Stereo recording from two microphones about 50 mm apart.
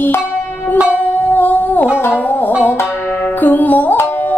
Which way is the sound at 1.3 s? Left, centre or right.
Left.